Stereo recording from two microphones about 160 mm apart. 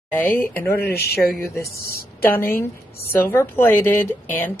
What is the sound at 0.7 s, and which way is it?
Speech, 75° left (ahead or behind).